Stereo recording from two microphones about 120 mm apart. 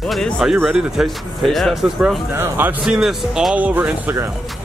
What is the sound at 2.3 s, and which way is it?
Speech, 20° right (ahead or behind).